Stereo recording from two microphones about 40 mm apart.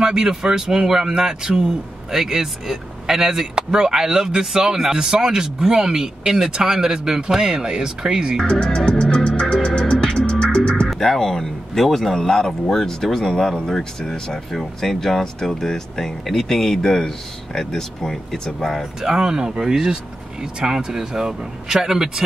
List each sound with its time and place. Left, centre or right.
0.0 s speech: centre
8.7 s music: left
10.9 s music: centre
11.1 s speech: centre
18.9 s speech: centre